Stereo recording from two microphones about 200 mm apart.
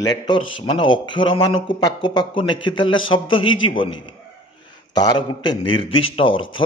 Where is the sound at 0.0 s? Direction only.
20° left (ahead or behind).